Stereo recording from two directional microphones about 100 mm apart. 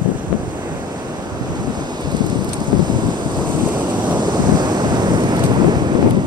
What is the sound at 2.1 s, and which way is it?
Wind noise, 45° right (ahead or behind).